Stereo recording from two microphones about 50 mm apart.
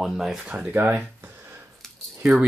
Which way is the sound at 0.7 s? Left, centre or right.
Right.